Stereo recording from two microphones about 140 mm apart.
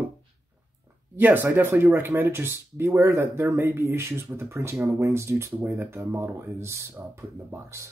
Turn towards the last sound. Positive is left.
turn(degrees=-20)  # may be behind; listen again after turning